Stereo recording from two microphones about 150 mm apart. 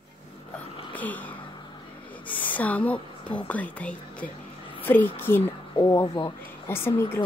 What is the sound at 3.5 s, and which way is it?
A woman's voice, 10° left (ahead or behind).